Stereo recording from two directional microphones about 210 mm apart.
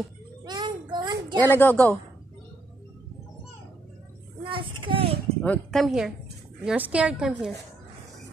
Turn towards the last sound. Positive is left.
turn(degrees=-5)  # may be behind; listen again after turning